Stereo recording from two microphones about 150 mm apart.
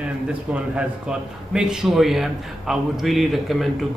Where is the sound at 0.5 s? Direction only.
5° right (ahead or behind).